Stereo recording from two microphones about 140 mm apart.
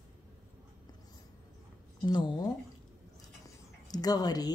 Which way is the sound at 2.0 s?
30° left (ahead or behind).